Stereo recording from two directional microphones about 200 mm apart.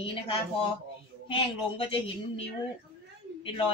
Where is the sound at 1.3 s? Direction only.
25° left (ahead or behind).